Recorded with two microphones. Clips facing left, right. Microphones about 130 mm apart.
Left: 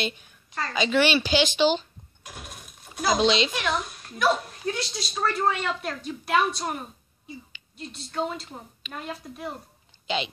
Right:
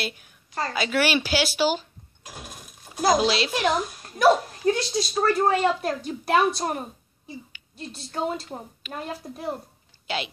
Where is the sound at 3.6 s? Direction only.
40° right (ahead or behind).